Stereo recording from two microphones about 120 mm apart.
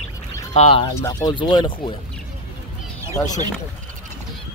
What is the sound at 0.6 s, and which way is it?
Speech, 55° left (ahead or behind).